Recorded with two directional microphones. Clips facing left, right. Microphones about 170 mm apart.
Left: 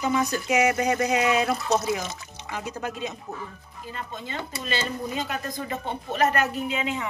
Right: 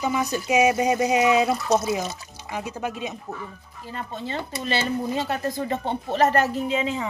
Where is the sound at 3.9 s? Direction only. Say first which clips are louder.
Right 4 dB; 35° right (ahead or behind).